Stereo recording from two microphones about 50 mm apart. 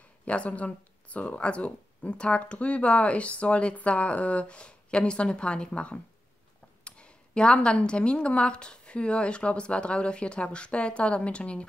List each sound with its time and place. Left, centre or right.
0.2 s speech: left